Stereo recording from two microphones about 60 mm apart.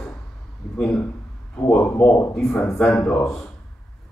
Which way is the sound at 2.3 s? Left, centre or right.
Centre.